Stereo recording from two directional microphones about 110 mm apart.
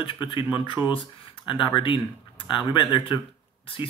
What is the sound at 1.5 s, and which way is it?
Speech, 50° left (ahead or behind).